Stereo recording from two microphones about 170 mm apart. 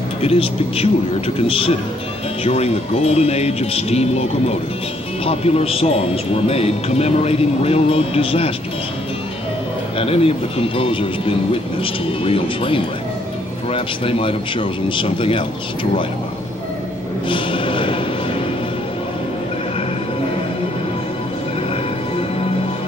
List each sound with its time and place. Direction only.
0.2 s a man's voice: 35° left (ahead or behind)
9.9 s a man's voice: 35° left (ahead or behind)
17.3 s music: 30° left (ahead or behind)